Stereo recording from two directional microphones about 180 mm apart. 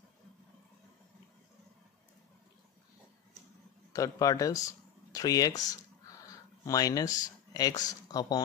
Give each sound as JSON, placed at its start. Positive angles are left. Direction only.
{"t": 3.9, "sound": "speech", "side_deg": 20}
{"t": 6.2, "sound": "a sound", "side_deg": 20}
{"t": 7.2, "sound": "speech", "side_deg": 20}